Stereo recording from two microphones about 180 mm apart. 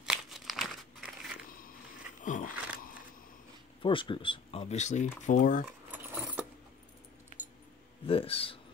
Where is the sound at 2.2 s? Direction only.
45° left (ahead or behind).